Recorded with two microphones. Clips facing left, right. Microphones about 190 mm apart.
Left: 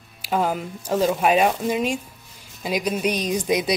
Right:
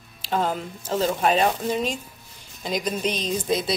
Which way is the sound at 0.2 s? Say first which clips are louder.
Left 2 dB; 10° left (ahead or behind).